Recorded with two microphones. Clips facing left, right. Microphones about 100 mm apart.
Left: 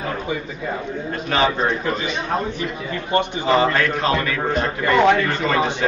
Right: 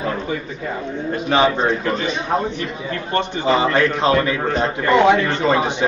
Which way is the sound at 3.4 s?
20° right (ahead or behind).